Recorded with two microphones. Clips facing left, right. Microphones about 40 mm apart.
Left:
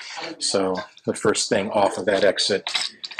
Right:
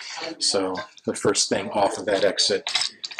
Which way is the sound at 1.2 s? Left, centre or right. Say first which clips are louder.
Left 2 dB; left.